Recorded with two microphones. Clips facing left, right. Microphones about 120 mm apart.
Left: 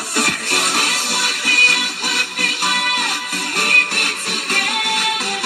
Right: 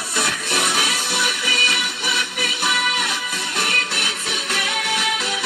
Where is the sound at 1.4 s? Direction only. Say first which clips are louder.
Left 2 dB; 60° left (ahead or behind).